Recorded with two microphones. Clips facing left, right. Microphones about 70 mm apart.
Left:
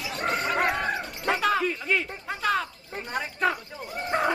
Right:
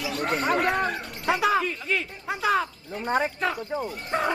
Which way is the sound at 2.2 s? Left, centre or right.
Centre.